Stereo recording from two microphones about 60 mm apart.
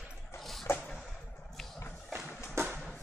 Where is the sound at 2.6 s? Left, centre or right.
Right.